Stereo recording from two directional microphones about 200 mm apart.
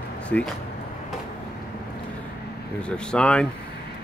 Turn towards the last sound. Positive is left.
turn(degrees=5)  # may be behind; listen again after turning